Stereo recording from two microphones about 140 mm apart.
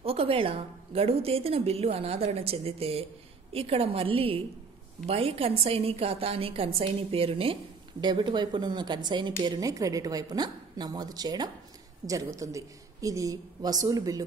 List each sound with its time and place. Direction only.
0.0 s a woman's voice: 45° right (ahead or behind); by 14.2 s 25° right (ahead or behind)